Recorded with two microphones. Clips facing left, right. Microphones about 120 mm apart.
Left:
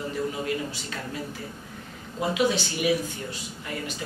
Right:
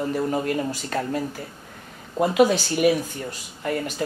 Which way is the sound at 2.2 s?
50° right (ahead or behind).